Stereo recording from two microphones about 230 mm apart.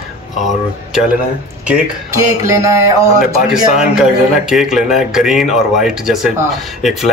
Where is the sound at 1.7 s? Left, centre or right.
Centre.